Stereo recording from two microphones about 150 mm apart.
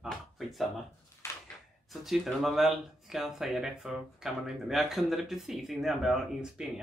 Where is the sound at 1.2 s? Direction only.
15° left (ahead or behind).